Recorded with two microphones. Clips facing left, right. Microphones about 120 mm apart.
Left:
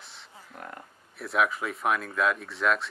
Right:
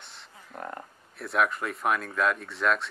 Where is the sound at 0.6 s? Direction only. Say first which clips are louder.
Right 5 dB; 40° right (ahead or behind).